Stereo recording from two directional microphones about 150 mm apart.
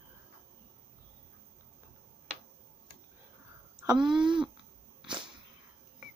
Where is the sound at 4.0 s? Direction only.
5° right (ahead or behind).